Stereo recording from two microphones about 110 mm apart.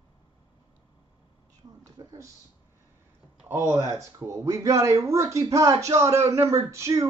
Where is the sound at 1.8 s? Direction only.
30° right (ahead or behind).